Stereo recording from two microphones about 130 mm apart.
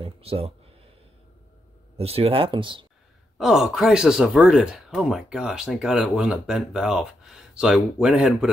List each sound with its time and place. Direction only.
0.0 s speech: 50° right (ahead or behind)
2.0 s speech: 50° right (ahead or behind)
3.3 s speech: 5° right (ahead or behind)